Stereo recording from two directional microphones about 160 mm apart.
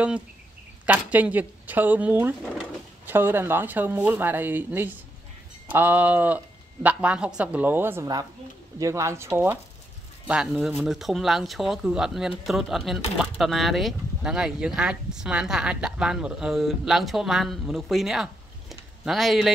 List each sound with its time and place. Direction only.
0.8 s speech: 10° right (ahead or behind)